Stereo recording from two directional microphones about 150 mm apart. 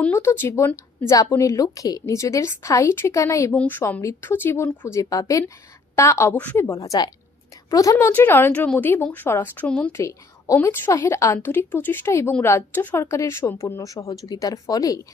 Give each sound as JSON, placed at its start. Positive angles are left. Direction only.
{"t": 0.0, "sound": "a woman's voice", "side_deg": 15}
{"t": 3.5, "sound": "a woman's voice", "side_deg": 10}
{"t": 9.9, "sound": "a woman's voice", "side_deg": 20}